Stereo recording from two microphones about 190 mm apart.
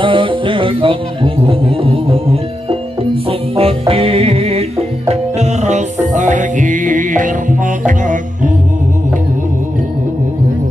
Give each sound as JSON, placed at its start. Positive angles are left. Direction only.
{"t": 0.0, "sound": "music", "side_deg": -25}